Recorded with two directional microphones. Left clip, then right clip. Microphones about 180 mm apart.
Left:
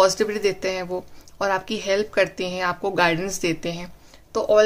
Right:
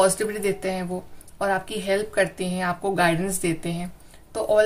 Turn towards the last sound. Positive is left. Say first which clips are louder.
# left 3 dB
turn(degrees=35)  # may be behind; listen again after turning